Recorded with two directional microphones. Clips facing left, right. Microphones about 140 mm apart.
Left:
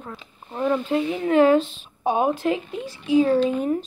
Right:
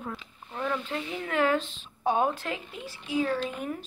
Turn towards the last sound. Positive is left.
turn(degrees=30)  # may be behind; listen again after turning